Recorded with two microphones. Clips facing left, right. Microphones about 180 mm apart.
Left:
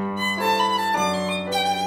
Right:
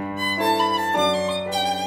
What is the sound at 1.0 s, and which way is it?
Violin, 30° right (ahead or behind).